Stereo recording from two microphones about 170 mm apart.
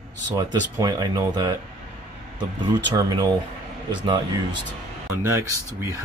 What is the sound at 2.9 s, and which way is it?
Speech, 20° right (ahead or behind).